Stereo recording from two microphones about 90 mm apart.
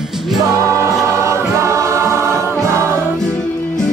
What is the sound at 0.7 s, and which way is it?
Choir, 35° right (ahead or behind).